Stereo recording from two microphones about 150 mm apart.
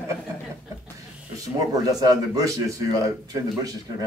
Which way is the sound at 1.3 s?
25° right (ahead or behind).